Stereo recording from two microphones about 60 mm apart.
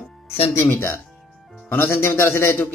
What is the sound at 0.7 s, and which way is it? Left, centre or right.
Speech, left.